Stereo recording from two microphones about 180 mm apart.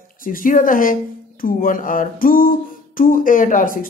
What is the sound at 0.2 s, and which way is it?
Speech, 50° left (ahead or behind).